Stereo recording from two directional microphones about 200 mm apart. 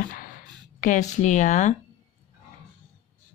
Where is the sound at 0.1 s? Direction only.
40° left (ahead or behind).